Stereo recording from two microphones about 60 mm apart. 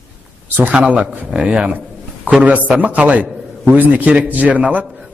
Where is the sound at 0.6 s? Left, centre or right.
Right.